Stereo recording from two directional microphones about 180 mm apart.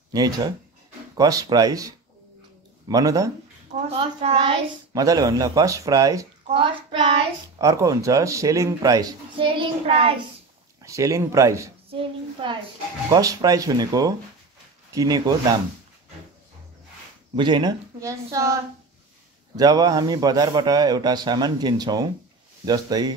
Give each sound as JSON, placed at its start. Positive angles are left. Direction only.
{"t": 0.1, "sound": "a man's voice", "side_deg": -20}
{"t": 3.9, "sound": "a man's voice", "side_deg": -30}
{"t": 10.8, "sound": "speech", "side_deg": -15}
{"t": 11.9, "sound": "a man's voice", "side_deg": -30}
{"t": 17.4, "sound": "a man's voice", "side_deg": -25}